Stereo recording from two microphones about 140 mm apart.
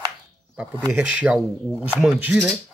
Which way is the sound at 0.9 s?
10° right (ahead or behind).